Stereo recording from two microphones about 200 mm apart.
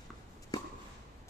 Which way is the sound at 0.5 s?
20° left (ahead or behind).